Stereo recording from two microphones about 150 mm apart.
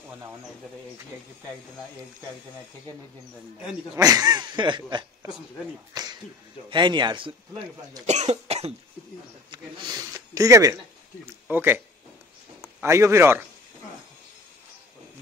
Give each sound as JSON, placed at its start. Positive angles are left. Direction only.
{"t": 0.1, "sound": "a man's voice", "side_deg": -15}
{"t": 3.9, "sound": "speech", "side_deg": -25}
{"t": 6.7, "sound": "a man's voice", "side_deg": -30}
{"t": 8.1, "sound": "cough", "side_deg": -50}
{"t": 9.5, "sound": "a man's voice", "side_deg": -25}
{"t": 12.8, "sound": "a man's voice", "side_deg": -20}